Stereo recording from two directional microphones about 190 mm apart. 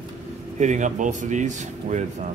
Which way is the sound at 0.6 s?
40° right (ahead or behind).